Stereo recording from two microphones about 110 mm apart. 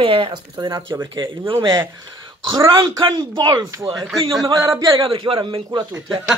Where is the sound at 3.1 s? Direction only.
40° right (ahead or behind).